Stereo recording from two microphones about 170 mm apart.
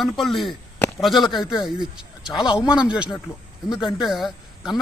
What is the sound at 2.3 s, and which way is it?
Speech, 25° left (ahead or behind).